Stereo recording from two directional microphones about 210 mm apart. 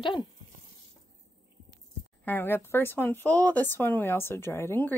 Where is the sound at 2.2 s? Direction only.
10° left (ahead or behind).